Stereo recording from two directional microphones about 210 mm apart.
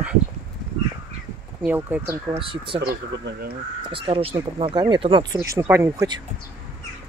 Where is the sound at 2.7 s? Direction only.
50° right (ahead or behind).